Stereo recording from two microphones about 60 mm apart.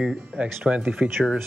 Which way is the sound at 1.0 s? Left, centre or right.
Right.